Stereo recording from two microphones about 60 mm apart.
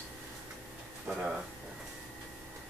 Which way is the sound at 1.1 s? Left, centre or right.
Centre.